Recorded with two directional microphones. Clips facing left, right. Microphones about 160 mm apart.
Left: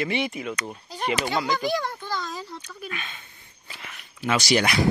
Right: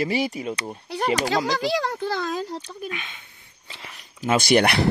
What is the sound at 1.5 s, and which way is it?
Speech, 90° right.